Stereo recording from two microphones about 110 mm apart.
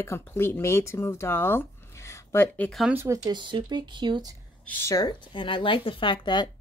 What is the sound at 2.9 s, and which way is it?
Speech, 20° right (ahead or behind).